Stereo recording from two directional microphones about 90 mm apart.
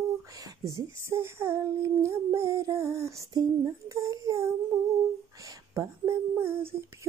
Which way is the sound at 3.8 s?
35° right (ahead or behind).